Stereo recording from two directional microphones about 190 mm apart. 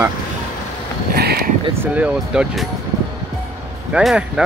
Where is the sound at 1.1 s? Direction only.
55° right (ahead or behind).